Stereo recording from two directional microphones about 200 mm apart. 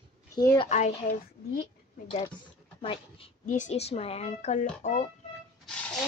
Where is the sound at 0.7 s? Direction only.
35° left (ahead or behind).